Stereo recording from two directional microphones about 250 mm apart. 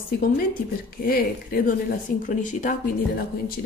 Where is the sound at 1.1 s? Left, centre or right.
Left.